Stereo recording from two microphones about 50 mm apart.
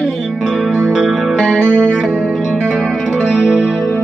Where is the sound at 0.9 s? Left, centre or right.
Centre.